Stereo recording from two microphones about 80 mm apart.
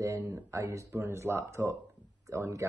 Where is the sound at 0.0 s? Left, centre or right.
Right.